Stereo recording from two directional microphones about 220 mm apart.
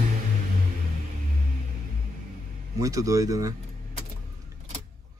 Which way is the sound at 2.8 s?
15° right (ahead or behind).